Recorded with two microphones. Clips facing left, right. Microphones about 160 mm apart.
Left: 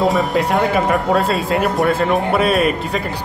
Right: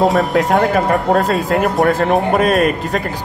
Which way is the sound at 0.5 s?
45° right (ahead or behind).